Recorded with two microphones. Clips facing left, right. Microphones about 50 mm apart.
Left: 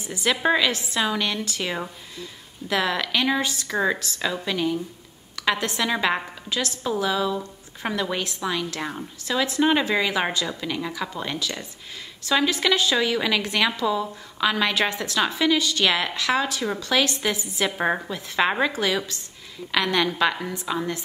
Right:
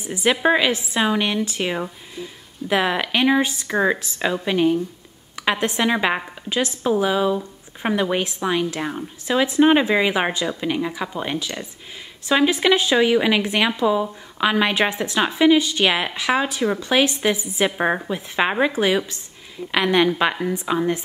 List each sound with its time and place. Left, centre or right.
0.0 s a woman's voice: centre